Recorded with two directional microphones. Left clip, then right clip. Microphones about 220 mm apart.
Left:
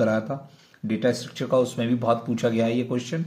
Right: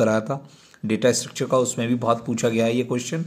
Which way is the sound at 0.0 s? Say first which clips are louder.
Right 3 dB; 30° right (ahead or behind).